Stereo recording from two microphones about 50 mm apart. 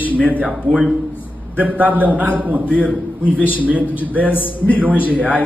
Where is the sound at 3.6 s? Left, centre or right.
Right.